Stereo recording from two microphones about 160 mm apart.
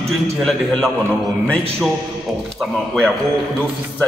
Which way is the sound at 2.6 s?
5° left (ahead or behind).